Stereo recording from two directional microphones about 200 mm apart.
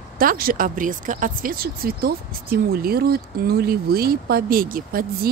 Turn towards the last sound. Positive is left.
turn(degrees=-45)  # may be behind; listen again after turning